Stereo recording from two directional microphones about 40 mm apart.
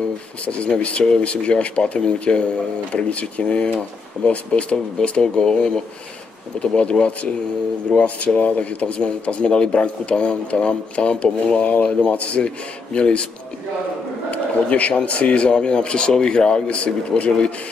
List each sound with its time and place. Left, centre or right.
0.5 s speech: left
7.9 s speech: centre
8.4 s speech: left
14.3 s speech: left